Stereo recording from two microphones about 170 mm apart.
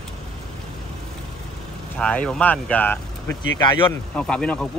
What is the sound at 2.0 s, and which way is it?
Speech, 5° left (ahead or behind).